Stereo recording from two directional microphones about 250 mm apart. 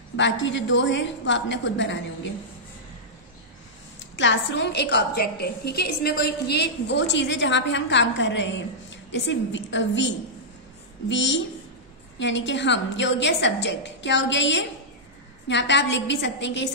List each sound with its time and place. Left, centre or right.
0.1 s a woman's voice: left
4.0 s a woman's voice: left